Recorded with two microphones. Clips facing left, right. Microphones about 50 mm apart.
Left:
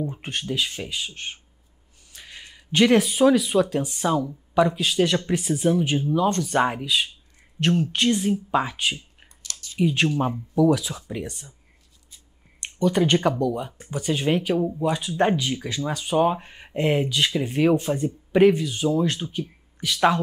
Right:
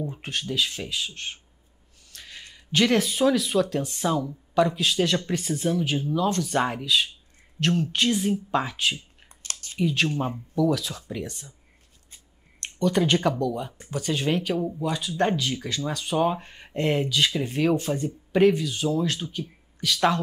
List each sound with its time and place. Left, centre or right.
0.0 s speech: centre
2.0 s a sound: centre
2.7 s speech: centre
9.4 s a sound: right
9.8 s speech: centre
12.5 s speech: centre
14.8 s speech: centre
18.9 s speech: centre